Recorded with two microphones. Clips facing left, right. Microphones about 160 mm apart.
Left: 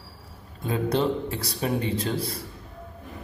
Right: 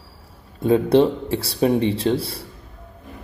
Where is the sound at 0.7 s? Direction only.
30° right (ahead or behind).